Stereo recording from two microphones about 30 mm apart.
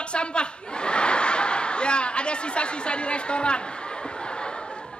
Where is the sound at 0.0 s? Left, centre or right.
Left.